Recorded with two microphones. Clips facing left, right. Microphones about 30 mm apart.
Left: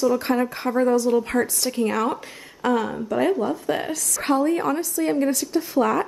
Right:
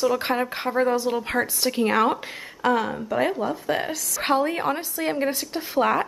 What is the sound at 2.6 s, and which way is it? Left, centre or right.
A woman's voice, centre.